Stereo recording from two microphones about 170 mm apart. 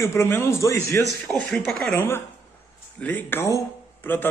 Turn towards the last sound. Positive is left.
turn(degrees=10)  # may be behind; listen again after turning